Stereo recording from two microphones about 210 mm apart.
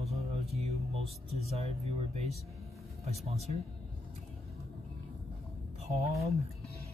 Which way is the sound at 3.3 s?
30° right (ahead or behind).